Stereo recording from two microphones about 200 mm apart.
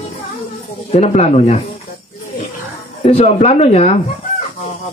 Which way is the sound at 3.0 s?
30° left (ahead or behind).